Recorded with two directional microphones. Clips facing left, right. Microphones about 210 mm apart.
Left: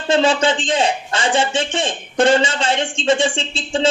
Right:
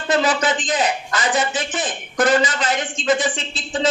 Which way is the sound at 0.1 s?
30° left (ahead or behind).